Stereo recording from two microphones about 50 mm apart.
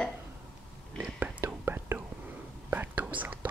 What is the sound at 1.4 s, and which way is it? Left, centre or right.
Whispering, right.